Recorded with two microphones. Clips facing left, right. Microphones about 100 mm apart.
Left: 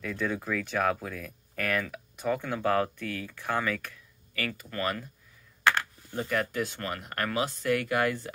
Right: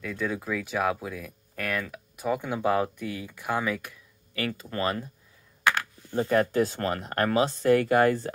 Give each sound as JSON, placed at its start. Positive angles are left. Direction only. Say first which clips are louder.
{"t": 0.0, "sound": "speech", "louder": "right 1 dB", "side_deg": -5}
{"t": 6.1, "sound": "speech", "louder": "right 7 dB", "side_deg": -35}